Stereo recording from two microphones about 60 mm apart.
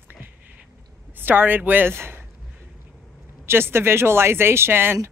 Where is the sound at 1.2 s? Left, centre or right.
Right.